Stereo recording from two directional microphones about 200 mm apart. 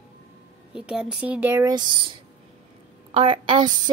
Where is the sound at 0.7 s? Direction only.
5° right (ahead or behind); by 2.1 s 20° right (ahead or behind).